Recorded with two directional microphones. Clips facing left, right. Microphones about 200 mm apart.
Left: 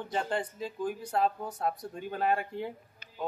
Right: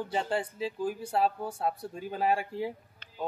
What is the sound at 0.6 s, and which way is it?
Speech, 30° right (ahead or behind).